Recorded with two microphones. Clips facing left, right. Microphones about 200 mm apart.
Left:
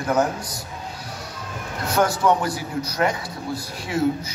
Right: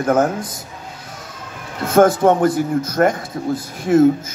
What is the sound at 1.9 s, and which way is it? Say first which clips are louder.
A man's voice: right 7 dB; 50° right (ahead or behind).